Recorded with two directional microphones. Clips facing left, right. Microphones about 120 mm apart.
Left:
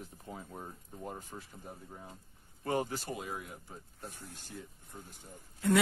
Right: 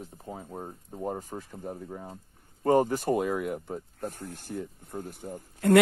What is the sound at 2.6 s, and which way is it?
Speech, 45° right (ahead or behind).